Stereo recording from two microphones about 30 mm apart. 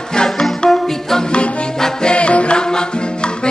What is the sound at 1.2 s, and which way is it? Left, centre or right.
Music, left.